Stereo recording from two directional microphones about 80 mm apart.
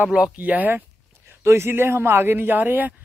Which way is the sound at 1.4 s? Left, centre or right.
Right.